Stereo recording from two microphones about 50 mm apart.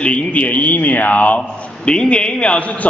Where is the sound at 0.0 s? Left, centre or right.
Left.